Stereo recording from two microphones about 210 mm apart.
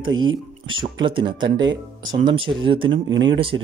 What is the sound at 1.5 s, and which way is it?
Speech, 60° right (ahead or behind).